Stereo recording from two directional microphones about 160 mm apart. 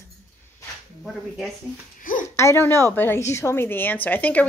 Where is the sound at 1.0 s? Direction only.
5° left (ahead or behind).